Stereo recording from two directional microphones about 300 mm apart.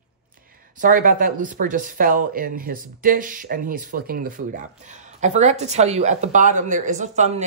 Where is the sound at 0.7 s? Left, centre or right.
Right.